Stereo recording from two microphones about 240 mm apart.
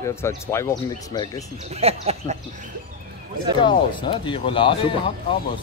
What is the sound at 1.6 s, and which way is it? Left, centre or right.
Speech, right.